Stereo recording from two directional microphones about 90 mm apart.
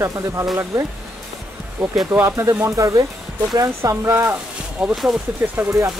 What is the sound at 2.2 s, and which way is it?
Speech, 35° right (ahead or behind).